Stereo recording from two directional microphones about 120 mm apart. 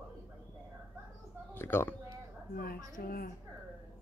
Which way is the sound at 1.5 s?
20° left (ahead or behind).